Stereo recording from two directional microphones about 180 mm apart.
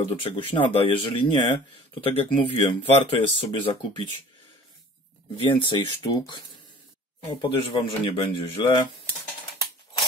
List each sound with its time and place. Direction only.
0.0 s speech: 30° left (ahead or behind)
5.4 s speech: 25° left (ahead or behind)
7.4 s speech: 30° left (ahead or behind)